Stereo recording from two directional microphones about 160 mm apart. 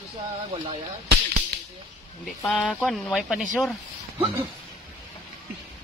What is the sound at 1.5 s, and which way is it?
Cap gun, 80° right.